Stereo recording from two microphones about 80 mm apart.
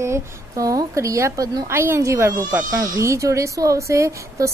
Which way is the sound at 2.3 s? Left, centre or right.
Right.